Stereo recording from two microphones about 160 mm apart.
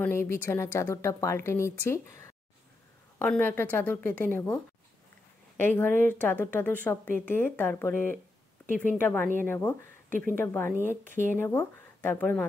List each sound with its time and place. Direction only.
0.0 s speech: 15° left (ahead or behind)
5.6 s speech: 10° left (ahead or behind)